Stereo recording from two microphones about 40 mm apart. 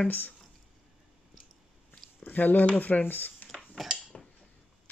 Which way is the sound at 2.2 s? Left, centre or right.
Left.